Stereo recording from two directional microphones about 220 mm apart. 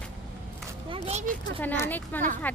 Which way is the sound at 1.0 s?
30° right (ahead or behind).